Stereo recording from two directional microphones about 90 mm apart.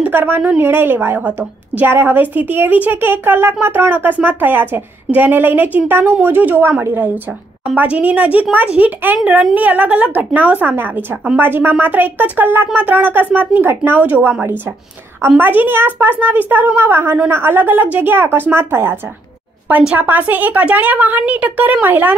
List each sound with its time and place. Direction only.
0.0 s a woman's voice: 20° right (ahead or behind)
19.7 s a woman's voice: 15° right (ahead or behind)